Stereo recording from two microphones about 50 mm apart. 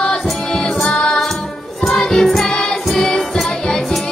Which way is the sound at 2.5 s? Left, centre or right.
Centre.